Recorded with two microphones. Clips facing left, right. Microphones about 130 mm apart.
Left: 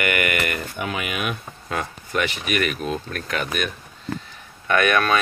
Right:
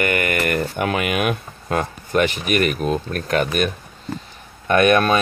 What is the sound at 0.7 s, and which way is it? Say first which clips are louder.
Speech: right 7 dB; 60° right (ahead or behind).